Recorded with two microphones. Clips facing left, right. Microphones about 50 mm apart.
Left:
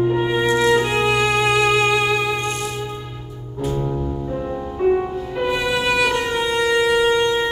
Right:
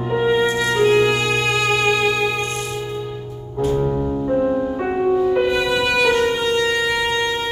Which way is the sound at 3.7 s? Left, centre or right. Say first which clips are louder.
Right 4 dB; right.